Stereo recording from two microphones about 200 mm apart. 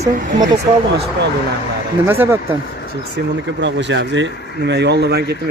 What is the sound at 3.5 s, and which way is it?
Speech, 65° right (ahead or behind).